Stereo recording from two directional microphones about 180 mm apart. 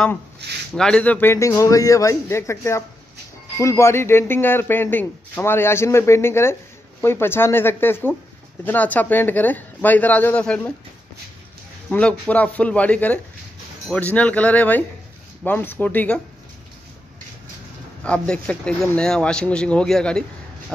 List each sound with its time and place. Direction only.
0.4 s speech: 70° right (ahead or behind)
0.7 s speech: 5° left (ahead or behind)
11.9 s speech: 5° left (ahead or behind)
18.0 s speech: 5° left (ahead or behind)